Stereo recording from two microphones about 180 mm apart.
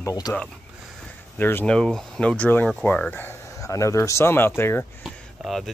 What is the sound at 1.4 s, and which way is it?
Speech, 10° left (ahead or behind).